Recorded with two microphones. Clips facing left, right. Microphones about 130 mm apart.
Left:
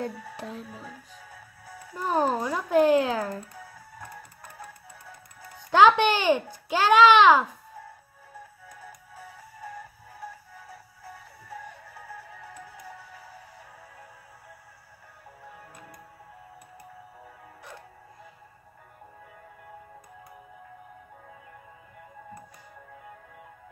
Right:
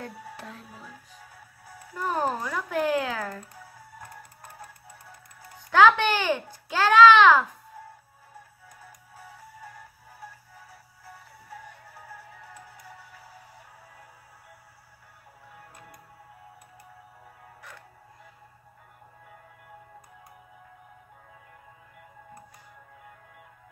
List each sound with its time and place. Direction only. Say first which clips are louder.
0.0 s speech: left 5 dB; 20° left (ahead or behind)
2.0 s a child's voice: left 3 dB; 20° left (ahead or behind)
5.7 s a child's voice: left 1 dB; 20° left (ahead or behind)